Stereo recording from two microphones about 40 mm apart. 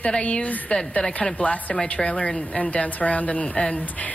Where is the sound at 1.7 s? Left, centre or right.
Left.